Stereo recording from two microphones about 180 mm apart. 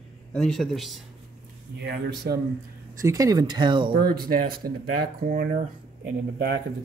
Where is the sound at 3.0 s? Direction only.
20° right (ahead or behind).